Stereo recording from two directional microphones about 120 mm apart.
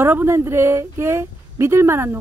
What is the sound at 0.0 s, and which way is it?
Speech, 20° right (ahead or behind).